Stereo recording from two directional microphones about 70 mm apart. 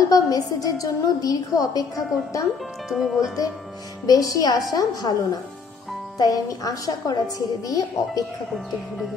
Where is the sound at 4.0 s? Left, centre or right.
Left.